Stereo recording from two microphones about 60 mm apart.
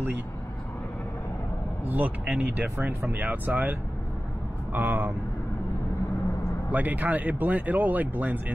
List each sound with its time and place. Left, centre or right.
1.9 s speech: right
4.7 s speech: right
6.7 s speech: right